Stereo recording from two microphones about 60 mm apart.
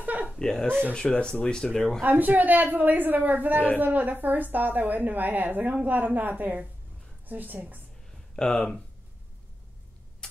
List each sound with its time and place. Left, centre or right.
0.0 s a sound: right
0.4 s speech: centre
2.0 s a woman's voice: right
8.4 s speech: centre